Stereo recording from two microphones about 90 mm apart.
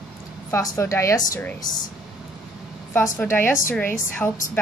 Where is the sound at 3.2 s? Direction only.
25° left (ahead or behind).